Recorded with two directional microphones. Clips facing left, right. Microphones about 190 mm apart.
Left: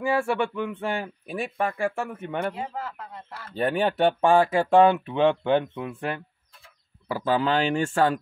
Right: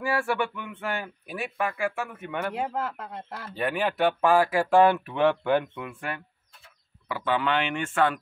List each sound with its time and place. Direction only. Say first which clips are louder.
0.0 s speech: left 3 dB; 25° left (ahead or behind)
2.5 s speech: right 3 dB; 80° right
3.2 s speech: right 3 dB; 45° right (ahead or behind)
3.5 s speech: left 3 dB; 30° left (ahead or behind)